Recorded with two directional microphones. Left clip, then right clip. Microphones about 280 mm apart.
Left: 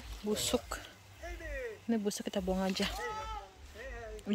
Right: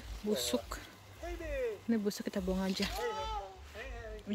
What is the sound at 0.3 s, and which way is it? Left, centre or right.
Speech, centre.